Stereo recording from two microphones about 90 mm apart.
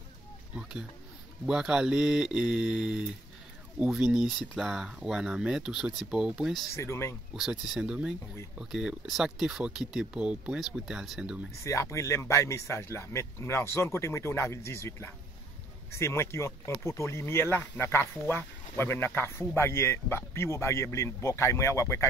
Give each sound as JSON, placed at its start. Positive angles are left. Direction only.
{"t": 0.6, "sound": "a sound", "side_deg": -10}
{"t": 1.4, "sound": "speech", "side_deg": -5}
{"t": 6.7, "sound": "speech", "side_deg": 30}
{"t": 7.3, "sound": "speech", "side_deg": -5}
{"t": 11.6, "sound": "speech", "side_deg": 35}